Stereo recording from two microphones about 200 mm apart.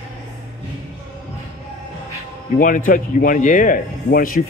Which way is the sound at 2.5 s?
40° left (ahead or behind).